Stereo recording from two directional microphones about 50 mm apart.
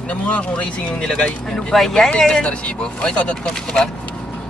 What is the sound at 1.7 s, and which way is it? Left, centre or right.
Speech, centre.